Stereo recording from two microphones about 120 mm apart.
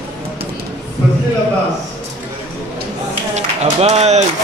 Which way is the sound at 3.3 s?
60° right (ahead or behind).